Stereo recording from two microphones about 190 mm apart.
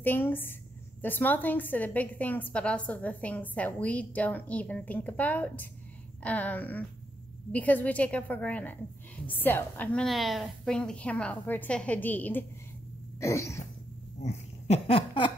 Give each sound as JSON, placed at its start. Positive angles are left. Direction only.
{"t": 0.0, "sound": "a woman's voice", "side_deg": 10}
{"t": 14.2, "sound": "speech", "side_deg": 35}